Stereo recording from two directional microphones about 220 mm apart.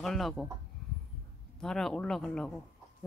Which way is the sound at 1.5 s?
5° left (ahead or behind).